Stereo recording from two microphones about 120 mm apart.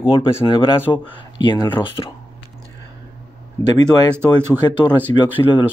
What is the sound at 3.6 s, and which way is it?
Speech, 25° left (ahead or behind).